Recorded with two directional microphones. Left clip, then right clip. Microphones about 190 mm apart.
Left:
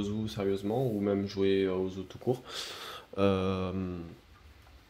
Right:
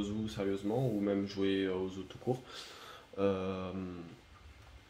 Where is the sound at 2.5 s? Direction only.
60° left (ahead or behind).